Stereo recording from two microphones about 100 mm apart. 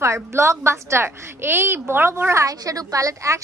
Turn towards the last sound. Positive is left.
turn(degrees=-35)  # may be behind; listen again after turning